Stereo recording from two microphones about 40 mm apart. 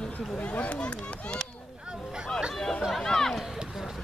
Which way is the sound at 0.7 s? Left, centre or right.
Left.